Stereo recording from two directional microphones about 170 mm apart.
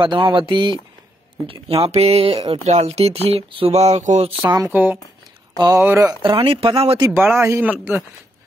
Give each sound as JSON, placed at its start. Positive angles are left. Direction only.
{"t": 0.0, "sound": "speech", "side_deg": -30}
{"t": 1.9, "sound": "speech", "side_deg": -40}
{"t": 4.4, "sound": "speech", "side_deg": -25}
{"t": 4.6, "sound": "speech", "side_deg": -10}
{"t": 6.2, "sound": "speech", "side_deg": -30}
{"t": 7.1, "sound": "speech", "side_deg": -15}